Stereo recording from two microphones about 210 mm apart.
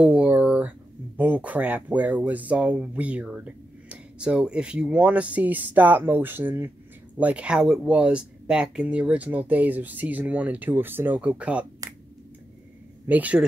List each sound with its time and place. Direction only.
0.0 s speech: 5° right (ahead or behind)
11.8 s finger snapping: 15° right (ahead or behind)
13.0 s speech: 5° right (ahead or behind)